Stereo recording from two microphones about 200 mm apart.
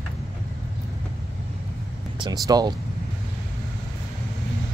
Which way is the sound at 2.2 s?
20° right (ahead or behind).